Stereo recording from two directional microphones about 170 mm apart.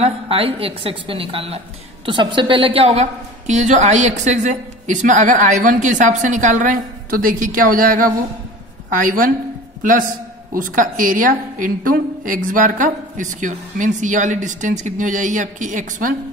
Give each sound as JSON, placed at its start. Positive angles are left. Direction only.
{"t": 0.0, "sound": "a woman's voice", "side_deg": -35}